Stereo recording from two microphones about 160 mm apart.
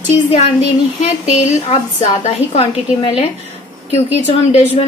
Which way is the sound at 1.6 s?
40° left (ahead or behind).